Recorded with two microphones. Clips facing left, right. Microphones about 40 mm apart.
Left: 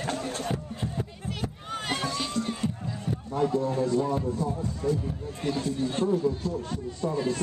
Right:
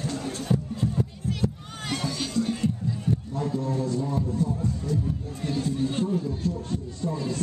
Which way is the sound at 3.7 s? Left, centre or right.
Left.